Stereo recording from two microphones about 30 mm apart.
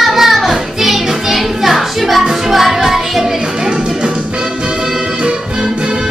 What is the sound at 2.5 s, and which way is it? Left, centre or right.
Music, centre.